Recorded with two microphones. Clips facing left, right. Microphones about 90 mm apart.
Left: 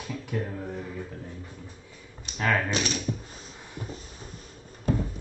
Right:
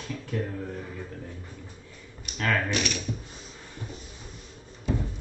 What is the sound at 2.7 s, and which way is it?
Speech, 30° left (ahead or behind).